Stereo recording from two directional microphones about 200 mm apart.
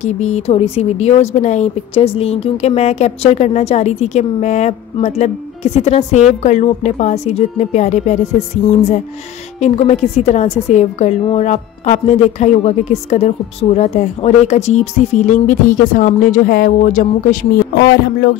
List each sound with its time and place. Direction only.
0.0 s a woman's voice: 35° left (ahead or behind)